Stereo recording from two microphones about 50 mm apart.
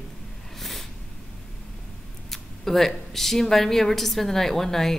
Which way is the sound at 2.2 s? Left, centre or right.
Centre.